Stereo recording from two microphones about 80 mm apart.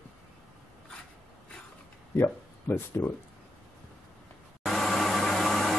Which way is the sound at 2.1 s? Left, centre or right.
Left.